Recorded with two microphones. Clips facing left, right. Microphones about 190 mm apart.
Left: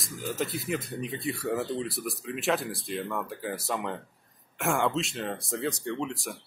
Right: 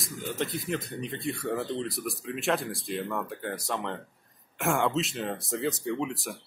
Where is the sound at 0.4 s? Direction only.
5° left (ahead or behind).